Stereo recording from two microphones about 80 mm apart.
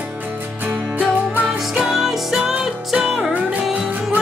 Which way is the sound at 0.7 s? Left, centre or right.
Right.